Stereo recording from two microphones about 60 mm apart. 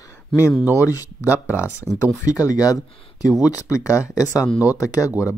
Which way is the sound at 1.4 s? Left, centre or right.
Left.